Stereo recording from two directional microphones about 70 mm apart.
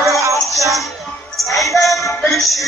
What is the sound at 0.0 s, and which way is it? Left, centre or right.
Music, right.